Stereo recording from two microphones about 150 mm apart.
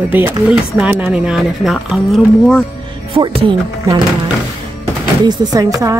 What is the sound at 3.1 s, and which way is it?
Speech, 35° right (ahead or behind).